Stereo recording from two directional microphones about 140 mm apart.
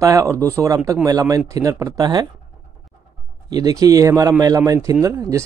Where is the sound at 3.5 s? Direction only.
25° right (ahead or behind).